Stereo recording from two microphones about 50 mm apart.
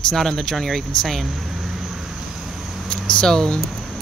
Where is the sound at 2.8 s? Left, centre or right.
Centre.